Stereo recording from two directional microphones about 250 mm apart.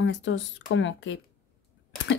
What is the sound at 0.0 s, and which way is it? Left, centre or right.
Speech, left.